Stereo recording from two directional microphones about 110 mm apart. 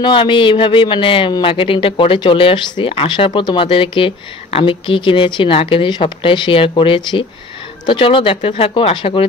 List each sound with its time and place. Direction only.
0.0 s speech: 50° left (ahead or behind)